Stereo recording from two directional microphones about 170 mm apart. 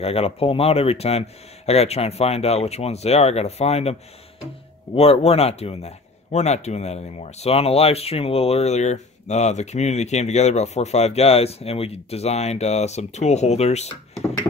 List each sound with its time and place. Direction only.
0.0 s speech: 35° left (ahead or behind)
4.9 s speech: 35° left (ahead or behind)